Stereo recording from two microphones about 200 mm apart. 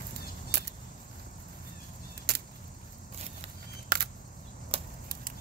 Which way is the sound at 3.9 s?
50° right (ahead or behind).